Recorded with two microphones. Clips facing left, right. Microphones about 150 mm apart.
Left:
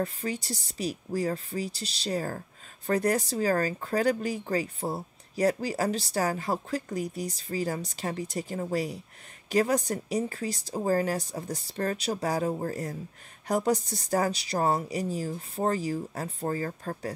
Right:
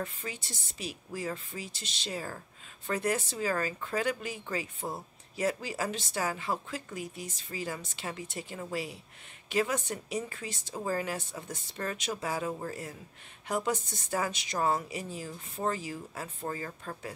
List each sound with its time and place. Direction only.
0.0 s speech: 35° left (ahead or behind)